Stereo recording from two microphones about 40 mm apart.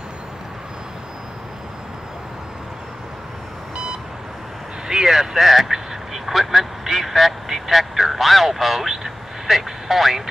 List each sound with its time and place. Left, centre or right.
4.8 s speech: centre
5.7 s quack: centre